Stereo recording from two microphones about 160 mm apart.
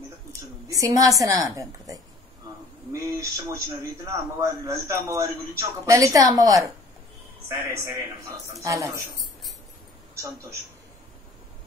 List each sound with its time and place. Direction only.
0.3 s a woman's voice: 20° right (ahead or behind)